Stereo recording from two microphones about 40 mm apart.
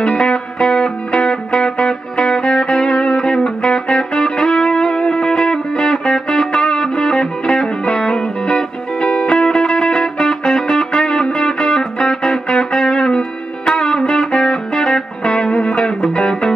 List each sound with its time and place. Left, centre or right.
0.0 s music: centre